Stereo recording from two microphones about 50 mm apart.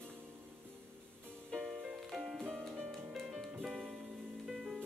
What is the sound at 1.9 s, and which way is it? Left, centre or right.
Music, centre.